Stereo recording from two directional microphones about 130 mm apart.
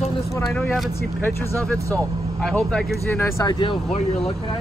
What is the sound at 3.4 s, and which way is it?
Speech, 35° left (ahead or behind).